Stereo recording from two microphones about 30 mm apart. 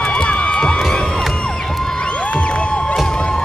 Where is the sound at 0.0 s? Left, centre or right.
Left.